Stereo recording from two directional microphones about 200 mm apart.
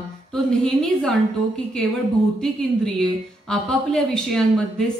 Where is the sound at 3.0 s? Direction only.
5° left (ahead or behind).